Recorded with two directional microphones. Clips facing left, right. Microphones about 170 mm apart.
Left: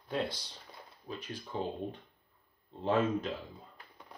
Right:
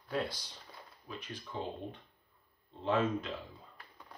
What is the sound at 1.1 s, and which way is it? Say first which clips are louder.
Speech: left 3 dB; 35° left (ahead or behind).